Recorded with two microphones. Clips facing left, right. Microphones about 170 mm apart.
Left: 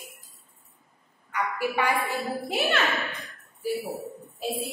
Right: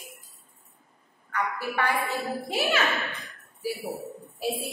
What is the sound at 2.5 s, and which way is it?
Speech, centre (ahead or behind).